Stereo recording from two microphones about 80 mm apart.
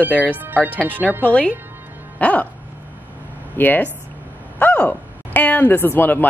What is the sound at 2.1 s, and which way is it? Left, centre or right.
Music, centre.